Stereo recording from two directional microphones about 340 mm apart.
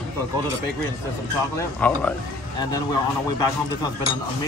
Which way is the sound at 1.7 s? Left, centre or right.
Centre.